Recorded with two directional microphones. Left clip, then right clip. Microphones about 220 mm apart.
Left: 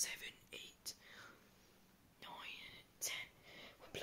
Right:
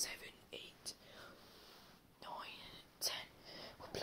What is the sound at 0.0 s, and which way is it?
Whispering, 15° left (ahead or behind).